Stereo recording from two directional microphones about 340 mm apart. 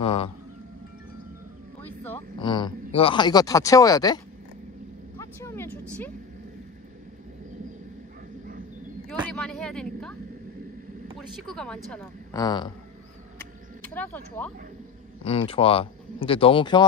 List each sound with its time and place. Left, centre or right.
0.0 s speech: centre
1.8 s speech: centre
5.2 s vehicle: centre
9.3 s speech: centre
11.1 s a woman's voice: centre
13.9 s a woman's voice: centre